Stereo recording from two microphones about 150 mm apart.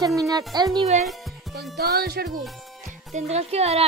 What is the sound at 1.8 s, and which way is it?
Music, 90° right.